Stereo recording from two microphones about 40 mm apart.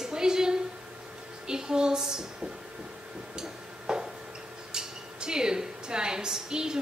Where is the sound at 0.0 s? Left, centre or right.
Centre.